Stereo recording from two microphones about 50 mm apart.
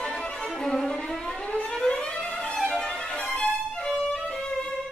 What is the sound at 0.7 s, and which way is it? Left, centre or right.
Violin, centre.